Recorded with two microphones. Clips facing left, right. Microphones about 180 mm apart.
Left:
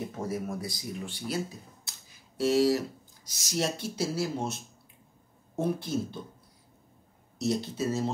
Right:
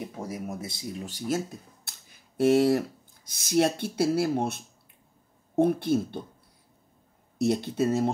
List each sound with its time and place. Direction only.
0.1 s speech: 15° right (ahead or behind)
1.0 s speech: 45° right (ahead or behind)
1.9 s a sound: 55° right (ahead or behind)
3.3 s speech: 55° right (ahead or behind)
5.6 s speech: 55° right (ahead or behind)
7.3 s speech: 60° right (ahead or behind)